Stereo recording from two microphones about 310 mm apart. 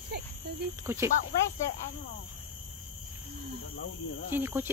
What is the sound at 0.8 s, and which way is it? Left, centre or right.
Speech, centre.